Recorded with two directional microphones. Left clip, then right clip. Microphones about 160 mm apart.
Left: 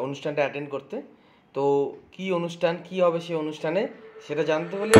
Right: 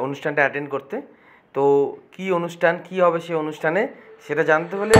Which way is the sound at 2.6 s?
10° right (ahead or behind).